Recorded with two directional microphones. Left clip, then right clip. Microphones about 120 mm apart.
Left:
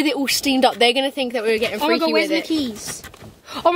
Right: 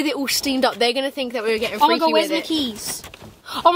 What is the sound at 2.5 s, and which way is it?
Speech, 10° right (ahead or behind).